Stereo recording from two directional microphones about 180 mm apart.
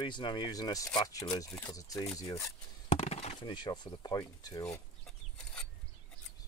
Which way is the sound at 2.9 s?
35° left (ahead or behind).